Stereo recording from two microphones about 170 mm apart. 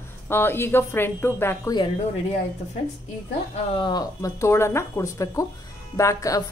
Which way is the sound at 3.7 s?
25° left (ahead or behind).